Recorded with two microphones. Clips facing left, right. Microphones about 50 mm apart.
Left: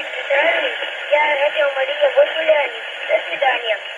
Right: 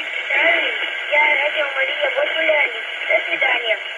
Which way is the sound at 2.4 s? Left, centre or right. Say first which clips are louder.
Left 2 dB; centre.